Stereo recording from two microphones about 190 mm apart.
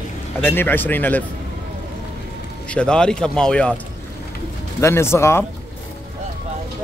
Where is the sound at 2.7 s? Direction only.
5° left (ahead or behind).